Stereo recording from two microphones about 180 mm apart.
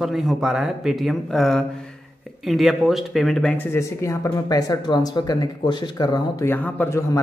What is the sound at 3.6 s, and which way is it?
Speech, 15° left (ahead or behind).